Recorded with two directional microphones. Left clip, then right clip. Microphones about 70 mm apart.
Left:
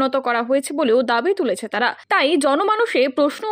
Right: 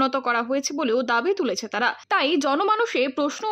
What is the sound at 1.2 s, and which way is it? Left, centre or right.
A woman's voice, left.